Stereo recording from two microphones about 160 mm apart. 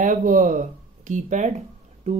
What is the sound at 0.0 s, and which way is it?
Speech, 55° right (ahead or behind).